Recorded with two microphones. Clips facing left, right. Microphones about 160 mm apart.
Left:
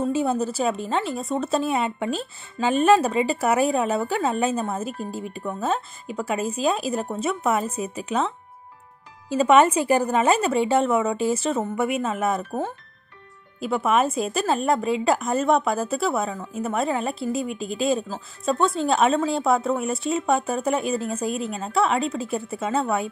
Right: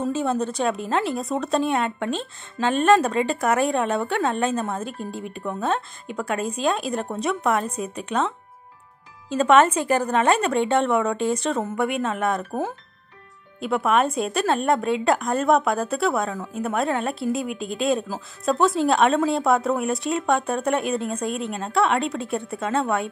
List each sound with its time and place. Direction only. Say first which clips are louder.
0.1 s speech: left 1 dB; 10° left (ahead or behind)
9.3 s speech: even; 10° left (ahead or behind)
13.6 s speech: even; centre (ahead or behind)